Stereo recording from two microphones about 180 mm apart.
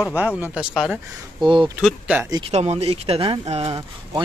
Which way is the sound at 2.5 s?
35° right (ahead or behind).